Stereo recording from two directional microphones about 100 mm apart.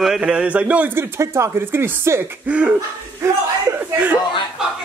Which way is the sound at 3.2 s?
25° right (ahead or behind).